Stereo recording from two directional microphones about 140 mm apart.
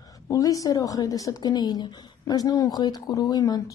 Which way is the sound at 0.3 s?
25° left (ahead or behind).